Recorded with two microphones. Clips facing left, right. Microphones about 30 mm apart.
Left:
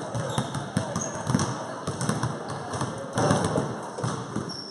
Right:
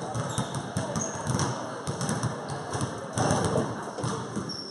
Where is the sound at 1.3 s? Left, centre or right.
Left.